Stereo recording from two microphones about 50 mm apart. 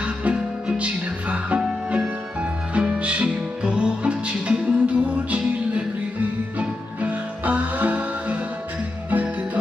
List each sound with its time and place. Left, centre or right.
0.0 s music: right
6.6 s music: right